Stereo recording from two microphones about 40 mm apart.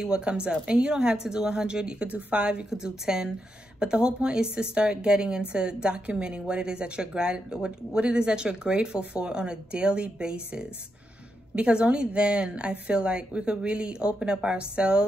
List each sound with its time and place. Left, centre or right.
0.0 s a woman's voice: right
2.0 s a woman's voice: right
2.7 s a woman's voice: centre